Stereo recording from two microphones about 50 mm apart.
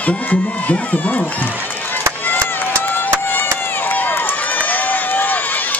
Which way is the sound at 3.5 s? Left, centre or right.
Left.